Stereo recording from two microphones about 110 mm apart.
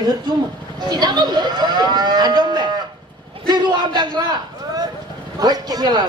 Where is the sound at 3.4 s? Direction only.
45° right (ahead or behind).